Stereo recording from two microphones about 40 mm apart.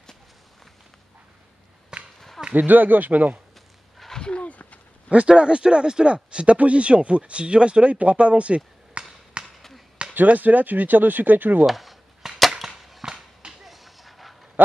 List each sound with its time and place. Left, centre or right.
2.1 s a sound: centre
2.5 s speech: right
4.2 s wild animals: left
5.3 s speech: right
10.1 s speech: right
11.6 s cap gun: centre
13.0 s run: centre
13.7 s a sound: centre